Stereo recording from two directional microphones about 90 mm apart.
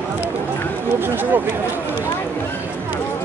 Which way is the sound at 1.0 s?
20° right (ahead or behind).